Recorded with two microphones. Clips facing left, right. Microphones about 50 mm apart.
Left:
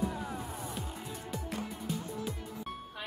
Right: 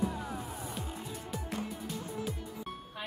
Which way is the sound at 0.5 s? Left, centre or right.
Centre.